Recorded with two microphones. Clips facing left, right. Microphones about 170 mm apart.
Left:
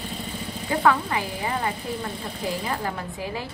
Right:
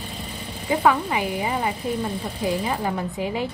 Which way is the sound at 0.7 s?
15° right (ahead or behind).